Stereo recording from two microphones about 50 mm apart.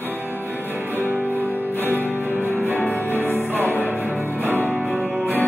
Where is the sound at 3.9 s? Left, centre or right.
Right.